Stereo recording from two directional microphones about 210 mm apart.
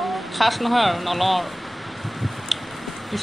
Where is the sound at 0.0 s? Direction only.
Centre (ahead or behind).